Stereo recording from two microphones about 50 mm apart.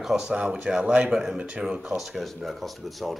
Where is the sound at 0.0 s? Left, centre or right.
Centre.